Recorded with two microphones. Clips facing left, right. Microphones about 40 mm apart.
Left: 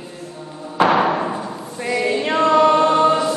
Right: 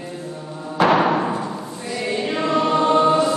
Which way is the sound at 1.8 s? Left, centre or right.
Left.